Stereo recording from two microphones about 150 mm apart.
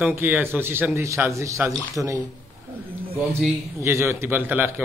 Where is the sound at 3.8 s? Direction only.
20° right (ahead or behind).